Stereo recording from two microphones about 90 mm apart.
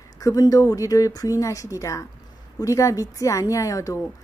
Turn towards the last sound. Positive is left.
turn(degrees=35)  # may be behind; listen again after turning